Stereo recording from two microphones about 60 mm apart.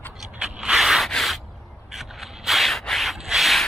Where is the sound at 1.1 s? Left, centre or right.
Centre.